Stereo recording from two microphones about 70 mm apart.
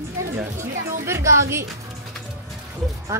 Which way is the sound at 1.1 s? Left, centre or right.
Right.